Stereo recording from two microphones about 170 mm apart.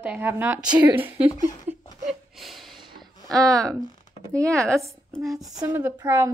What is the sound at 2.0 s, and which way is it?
Gasp, centre (ahead or behind).